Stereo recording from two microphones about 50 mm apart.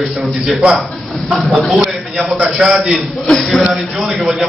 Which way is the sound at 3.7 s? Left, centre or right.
Centre.